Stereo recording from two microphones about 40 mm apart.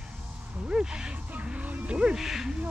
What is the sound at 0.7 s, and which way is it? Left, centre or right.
Speech, right.